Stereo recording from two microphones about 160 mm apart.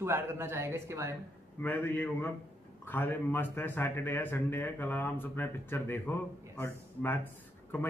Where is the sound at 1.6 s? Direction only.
10° left (ahead or behind).